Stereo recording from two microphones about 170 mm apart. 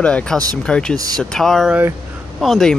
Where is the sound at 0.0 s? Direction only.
5° left (ahead or behind).